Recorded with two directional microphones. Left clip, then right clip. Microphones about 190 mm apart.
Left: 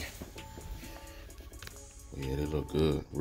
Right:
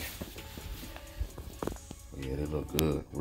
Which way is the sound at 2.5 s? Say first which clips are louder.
Left 1 dB; 20° left (ahead or behind).